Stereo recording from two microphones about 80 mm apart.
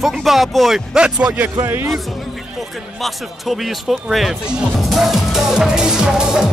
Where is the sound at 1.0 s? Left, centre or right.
Centre.